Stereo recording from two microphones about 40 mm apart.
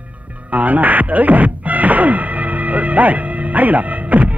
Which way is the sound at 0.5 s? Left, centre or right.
Right.